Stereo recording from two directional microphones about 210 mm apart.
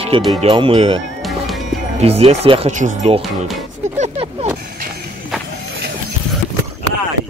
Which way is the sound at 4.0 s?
30° right (ahead or behind).